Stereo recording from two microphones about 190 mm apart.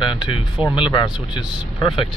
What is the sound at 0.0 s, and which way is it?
Speech, 25° left (ahead or behind).